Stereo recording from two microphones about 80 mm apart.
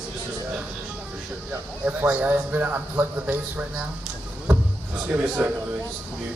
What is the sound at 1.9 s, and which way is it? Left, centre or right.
A man's voice, centre.